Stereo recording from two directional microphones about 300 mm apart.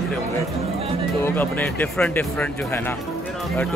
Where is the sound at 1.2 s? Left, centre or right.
Centre.